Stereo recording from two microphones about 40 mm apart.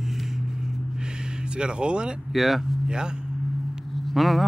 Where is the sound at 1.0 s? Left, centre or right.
Right.